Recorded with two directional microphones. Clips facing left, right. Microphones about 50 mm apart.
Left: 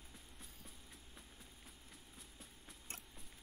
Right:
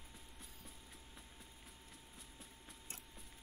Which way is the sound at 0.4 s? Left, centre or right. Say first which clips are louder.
Right 1 dB; centre.